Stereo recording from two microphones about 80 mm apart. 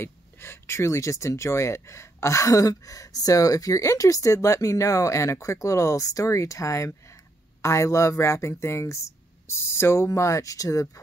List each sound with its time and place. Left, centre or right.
0.0 s speech: left